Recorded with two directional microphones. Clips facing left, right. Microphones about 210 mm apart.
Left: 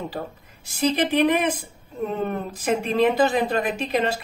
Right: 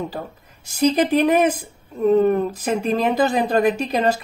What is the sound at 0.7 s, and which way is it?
Speech, 40° right (ahead or behind).